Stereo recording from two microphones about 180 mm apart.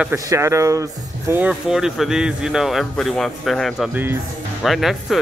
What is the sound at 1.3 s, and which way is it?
Speech, 5° right (ahead or behind).